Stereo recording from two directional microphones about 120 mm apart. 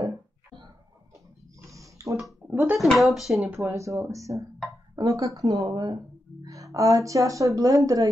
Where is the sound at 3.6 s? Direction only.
25° right (ahead or behind).